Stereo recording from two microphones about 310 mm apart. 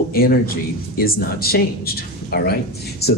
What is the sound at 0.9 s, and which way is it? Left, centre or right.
Speech, left.